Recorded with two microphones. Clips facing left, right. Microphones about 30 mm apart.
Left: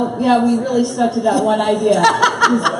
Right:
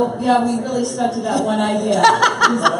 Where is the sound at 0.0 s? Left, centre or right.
Centre.